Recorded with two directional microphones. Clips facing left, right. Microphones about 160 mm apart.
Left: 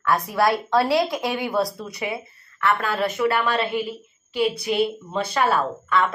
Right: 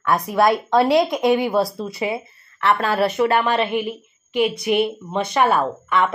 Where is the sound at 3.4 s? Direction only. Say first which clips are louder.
Right 3 dB; 20° right (ahead or behind).